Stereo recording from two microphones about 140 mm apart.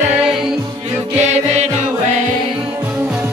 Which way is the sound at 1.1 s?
50° right (ahead or behind).